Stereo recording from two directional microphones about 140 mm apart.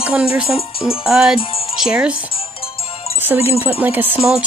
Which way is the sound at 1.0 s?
5° right (ahead or behind).